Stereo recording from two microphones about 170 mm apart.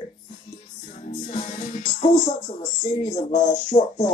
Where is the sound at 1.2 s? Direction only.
30° left (ahead or behind).